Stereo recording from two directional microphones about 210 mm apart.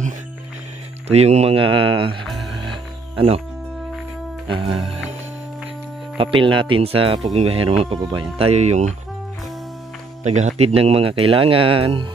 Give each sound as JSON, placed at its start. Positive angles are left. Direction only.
{"t": 1.0, "sound": "speech", "side_deg": -30}
{"t": 2.7, "sound": "music", "side_deg": -25}
{"t": 6.1, "sound": "speech", "side_deg": -25}
{"t": 10.2, "sound": "speech", "side_deg": -35}